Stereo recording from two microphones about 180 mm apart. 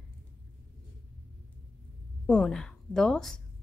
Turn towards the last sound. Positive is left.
turn(degrees=5)  # may be behind; listen again after turning